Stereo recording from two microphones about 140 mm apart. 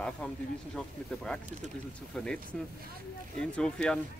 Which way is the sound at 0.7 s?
5° left (ahead or behind).